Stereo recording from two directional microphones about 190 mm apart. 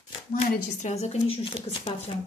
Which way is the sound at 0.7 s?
35° left (ahead or behind).